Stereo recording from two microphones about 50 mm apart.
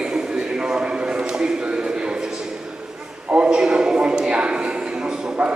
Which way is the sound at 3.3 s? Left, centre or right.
Centre.